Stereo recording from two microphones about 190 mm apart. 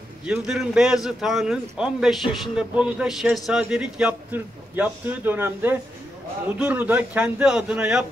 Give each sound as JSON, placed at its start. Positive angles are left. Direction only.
{"t": 0.3, "sound": "a man's voice", "side_deg": -5}